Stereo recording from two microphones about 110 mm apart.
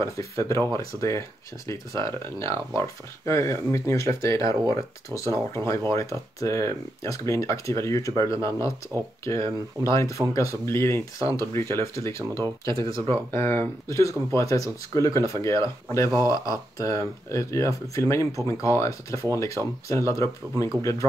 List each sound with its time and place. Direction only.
0.0 s speech: 25° left (ahead or behind)
12.8 s speech: 55° right (ahead or behind)
13.3 s speech: 20° left (ahead or behind)